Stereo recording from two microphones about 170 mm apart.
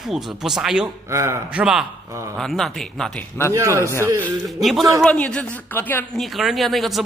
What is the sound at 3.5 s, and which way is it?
Speech, 15° right (ahead or behind).